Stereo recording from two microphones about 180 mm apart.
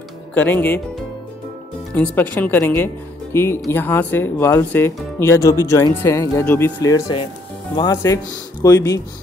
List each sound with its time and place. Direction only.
0.3 s speech: 10° left (ahead or behind)
2.0 s speech: 10° left (ahead or behind)